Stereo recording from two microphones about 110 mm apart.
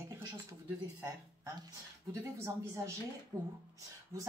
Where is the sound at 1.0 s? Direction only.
30° right (ahead or behind).